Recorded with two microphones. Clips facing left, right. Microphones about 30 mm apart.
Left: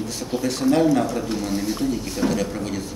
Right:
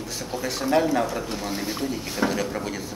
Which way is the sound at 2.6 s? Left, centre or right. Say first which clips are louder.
Left 3 dB; centre.